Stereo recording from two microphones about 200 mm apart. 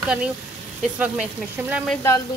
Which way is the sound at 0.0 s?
5° right (ahead or behind).